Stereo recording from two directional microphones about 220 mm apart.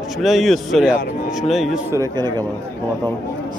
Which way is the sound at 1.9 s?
15° right (ahead or behind).